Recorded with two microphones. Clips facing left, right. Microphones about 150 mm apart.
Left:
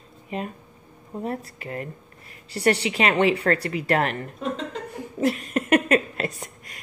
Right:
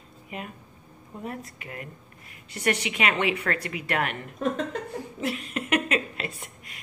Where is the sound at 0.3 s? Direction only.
30° left (ahead or behind).